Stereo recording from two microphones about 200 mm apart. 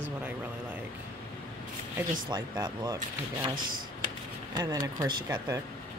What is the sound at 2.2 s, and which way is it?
Speech, 20° right (ahead or behind).